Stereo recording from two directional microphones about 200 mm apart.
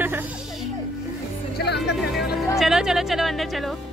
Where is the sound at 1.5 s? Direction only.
55° left (ahead or behind).